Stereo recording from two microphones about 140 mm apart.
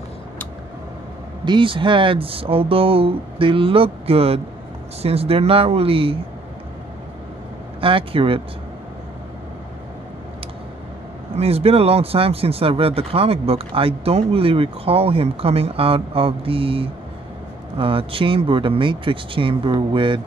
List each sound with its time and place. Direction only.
1.4 s speech: 35° right (ahead or behind)
7.8 s speech: 40° right (ahead or behind)
11.3 s speech: 45° right (ahead or behind)